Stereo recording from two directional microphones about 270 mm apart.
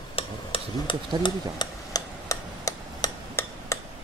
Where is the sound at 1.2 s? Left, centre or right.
Centre.